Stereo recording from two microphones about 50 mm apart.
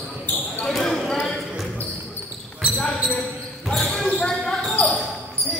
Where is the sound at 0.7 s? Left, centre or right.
Centre.